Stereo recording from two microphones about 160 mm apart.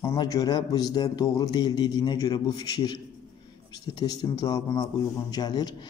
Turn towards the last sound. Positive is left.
turn(degrees=25)  # may be behind; listen again after turning